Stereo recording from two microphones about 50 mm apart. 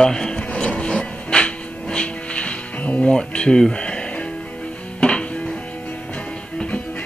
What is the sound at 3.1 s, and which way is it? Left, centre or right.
Speech, centre.